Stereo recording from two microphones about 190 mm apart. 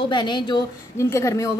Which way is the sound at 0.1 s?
25° left (ahead or behind).